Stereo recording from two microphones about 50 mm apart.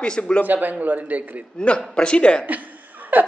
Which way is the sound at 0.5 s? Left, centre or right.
Right.